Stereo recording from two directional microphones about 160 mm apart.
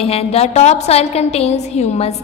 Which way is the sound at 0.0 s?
40° left (ahead or behind).